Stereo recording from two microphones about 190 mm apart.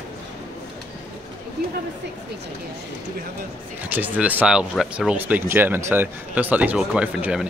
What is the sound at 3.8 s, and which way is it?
Speech, 10° right (ahead or behind).